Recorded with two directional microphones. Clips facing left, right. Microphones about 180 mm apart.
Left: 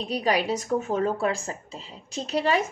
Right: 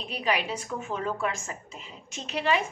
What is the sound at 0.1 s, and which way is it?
A woman's voice, 40° left (ahead or behind).